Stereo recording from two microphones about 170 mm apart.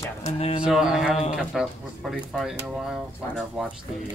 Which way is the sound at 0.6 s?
5° right (ahead or behind).